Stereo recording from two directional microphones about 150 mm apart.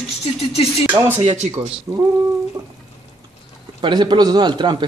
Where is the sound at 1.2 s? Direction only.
40° right (ahead or behind).